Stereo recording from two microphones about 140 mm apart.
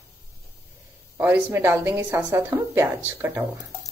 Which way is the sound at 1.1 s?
15° right (ahead or behind).